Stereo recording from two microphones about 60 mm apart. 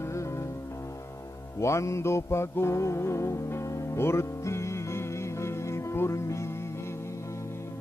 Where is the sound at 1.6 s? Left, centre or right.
Left.